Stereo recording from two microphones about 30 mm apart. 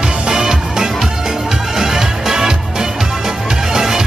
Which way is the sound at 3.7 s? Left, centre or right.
Centre.